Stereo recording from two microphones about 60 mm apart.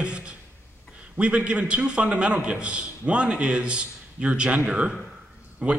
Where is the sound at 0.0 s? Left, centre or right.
Centre.